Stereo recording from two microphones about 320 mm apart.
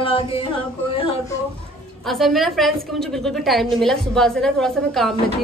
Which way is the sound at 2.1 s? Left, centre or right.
Centre.